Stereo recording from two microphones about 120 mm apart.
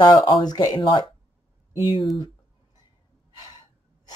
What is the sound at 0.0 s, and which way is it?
Speech, 35° left (ahead or behind).